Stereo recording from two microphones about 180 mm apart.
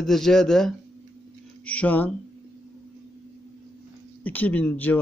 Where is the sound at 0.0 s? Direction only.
Centre (ahead or behind).